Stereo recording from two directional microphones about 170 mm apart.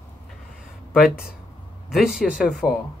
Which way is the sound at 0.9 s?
Centre (ahead or behind).